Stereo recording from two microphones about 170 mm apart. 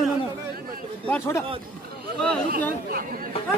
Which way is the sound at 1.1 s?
15° left (ahead or behind).